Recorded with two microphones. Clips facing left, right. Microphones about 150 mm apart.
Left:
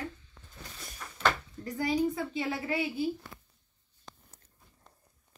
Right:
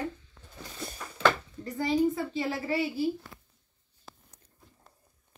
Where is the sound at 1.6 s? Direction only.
5° left (ahead or behind).